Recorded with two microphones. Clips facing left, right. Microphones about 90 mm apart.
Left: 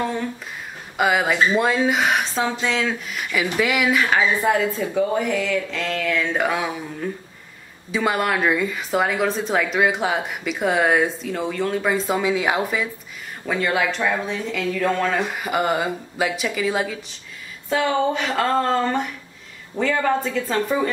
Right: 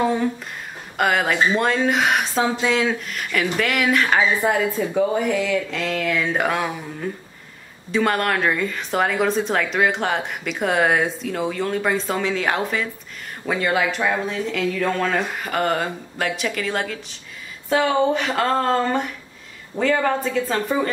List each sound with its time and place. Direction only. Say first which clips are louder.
0.9 s speech: even; 5° left (ahead or behind)
13.5 s speech: right 1 dB; 5° right (ahead or behind)